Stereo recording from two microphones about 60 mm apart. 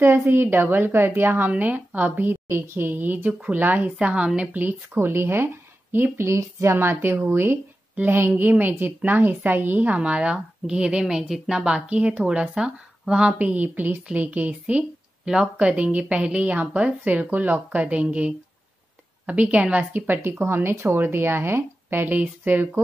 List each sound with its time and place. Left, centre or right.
0.0 s a woman's voice: right
1.5 s a woman's voice: right
7.9 s a sound: right
8.2 s a woman's voice: right
20.2 s a woman's voice: right
22.0 s a woman's voice: right